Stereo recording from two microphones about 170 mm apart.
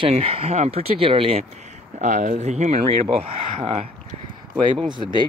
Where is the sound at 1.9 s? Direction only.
45° right (ahead or behind).